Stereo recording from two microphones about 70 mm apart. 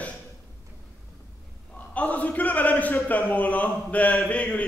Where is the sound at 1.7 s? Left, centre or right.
Left.